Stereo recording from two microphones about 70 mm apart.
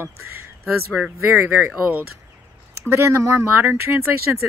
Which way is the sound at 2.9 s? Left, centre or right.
Right.